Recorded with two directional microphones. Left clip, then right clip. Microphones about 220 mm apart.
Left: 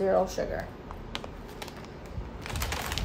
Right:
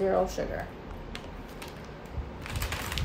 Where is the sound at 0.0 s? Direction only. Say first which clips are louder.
Left 1 dB; centre (ahead or behind).